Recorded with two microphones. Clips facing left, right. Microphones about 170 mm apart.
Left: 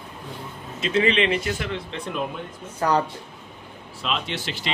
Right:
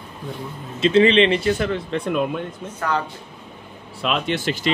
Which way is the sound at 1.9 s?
50° right (ahead or behind).